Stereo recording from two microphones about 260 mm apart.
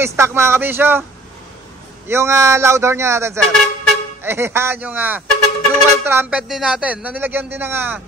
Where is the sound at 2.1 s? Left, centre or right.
Centre.